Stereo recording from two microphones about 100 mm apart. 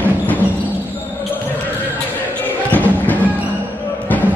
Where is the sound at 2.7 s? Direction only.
15° left (ahead or behind).